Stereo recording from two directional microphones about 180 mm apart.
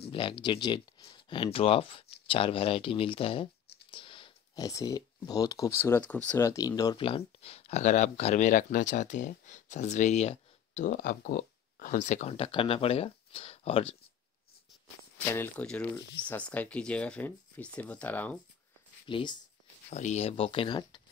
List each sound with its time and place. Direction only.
0.0 s speech: 30° left (ahead or behind)
15.1 s speech: 10° left (ahead or behind)
19.0 s speech: 25° left (ahead or behind)
19.9 s speech: 40° left (ahead or behind)